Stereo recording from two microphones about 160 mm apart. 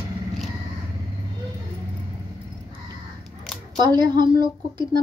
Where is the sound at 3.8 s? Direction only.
25° right (ahead or behind).